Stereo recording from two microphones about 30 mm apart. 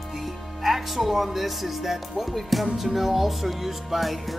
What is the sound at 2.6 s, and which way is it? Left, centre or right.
Music, centre.